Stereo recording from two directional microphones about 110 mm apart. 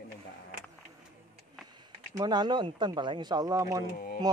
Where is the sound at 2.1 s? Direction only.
40° right (ahead or behind).